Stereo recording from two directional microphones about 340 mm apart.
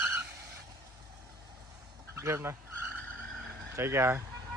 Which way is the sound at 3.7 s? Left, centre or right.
Centre.